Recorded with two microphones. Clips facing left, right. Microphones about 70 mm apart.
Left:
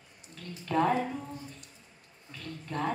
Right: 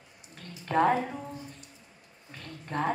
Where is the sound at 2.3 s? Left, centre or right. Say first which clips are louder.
Right 2 dB; right.